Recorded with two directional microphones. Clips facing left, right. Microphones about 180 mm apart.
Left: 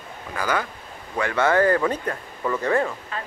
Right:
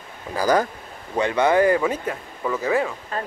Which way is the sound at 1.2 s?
20° right (ahead or behind).